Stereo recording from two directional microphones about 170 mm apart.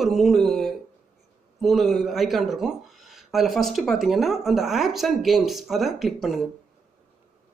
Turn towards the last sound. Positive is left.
turn(degrees=0)  # may be behind; listen again after turning